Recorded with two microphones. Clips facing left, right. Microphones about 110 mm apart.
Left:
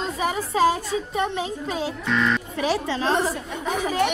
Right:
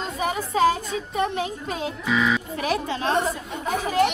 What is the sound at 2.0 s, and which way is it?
Speech, 5° right (ahead or behind).